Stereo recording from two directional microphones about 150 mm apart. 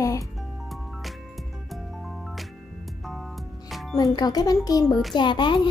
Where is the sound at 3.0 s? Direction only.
Centre (ahead or behind).